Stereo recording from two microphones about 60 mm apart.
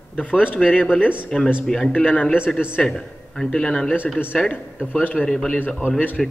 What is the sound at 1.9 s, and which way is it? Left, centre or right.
Speech, left.